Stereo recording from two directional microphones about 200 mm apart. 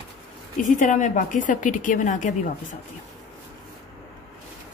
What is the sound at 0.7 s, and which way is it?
A woman's voice, 40° left (ahead or behind).